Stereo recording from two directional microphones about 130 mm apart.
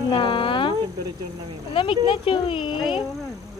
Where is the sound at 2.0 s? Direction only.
40° left (ahead or behind).